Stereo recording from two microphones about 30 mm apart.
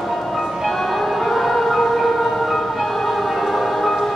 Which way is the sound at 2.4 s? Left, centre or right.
Centre.